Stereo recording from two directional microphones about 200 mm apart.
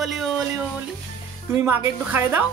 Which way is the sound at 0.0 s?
Centre (ahead or behind).